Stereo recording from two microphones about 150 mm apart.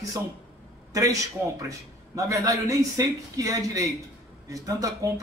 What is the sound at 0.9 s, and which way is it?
Speech, 20° right (ahead or behind).